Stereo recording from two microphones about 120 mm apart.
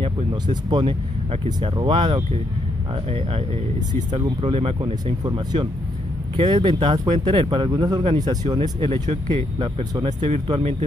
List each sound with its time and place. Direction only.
0.0 s speech: 40° right (ahead or behind)
3.1 s speech: 55° right (ahead or behind)
4.1 s speech: 40° right (ahead or behind)